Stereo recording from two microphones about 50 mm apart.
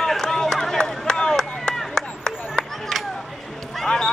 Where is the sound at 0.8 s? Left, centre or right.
Centre.